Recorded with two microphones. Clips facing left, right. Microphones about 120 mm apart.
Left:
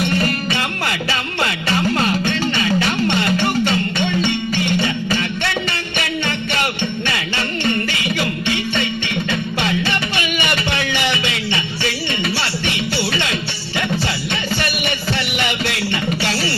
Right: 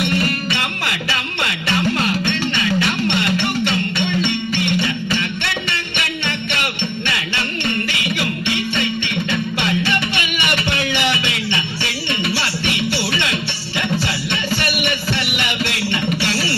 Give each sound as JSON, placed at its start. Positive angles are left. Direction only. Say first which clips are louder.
{"t": 0.0, "sound": "music", "louder": "left 1 dB", "side_deg": 35}
{"t": 9.6, "sound": "music", "louder": "left 1 dB", "side_deg": 40}
{"t": 13.7, "sound": "music", "louder": "even", "side_deg": 40}